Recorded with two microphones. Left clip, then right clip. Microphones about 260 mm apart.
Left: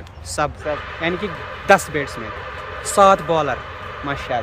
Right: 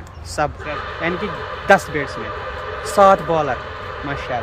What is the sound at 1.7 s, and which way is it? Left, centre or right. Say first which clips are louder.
Speech: even; centre.